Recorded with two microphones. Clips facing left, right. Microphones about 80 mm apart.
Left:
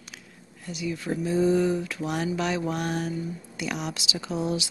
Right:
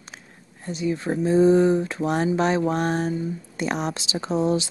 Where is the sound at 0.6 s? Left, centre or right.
Right.